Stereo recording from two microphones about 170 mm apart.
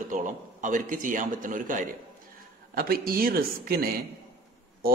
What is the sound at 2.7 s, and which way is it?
A man's voice, 60° right (ahead or behind).